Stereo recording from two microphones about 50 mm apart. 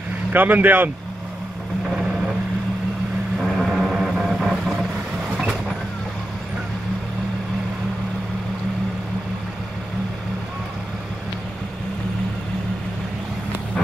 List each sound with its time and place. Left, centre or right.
0.3 s speech: right
3.4 s vehicle: centre